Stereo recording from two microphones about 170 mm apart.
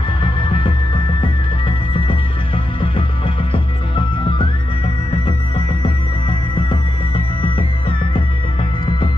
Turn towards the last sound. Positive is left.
turn(degrees=30)  # may be behind; listen again after turning